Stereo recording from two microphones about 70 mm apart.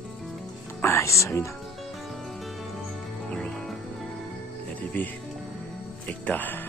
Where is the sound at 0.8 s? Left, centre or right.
Left.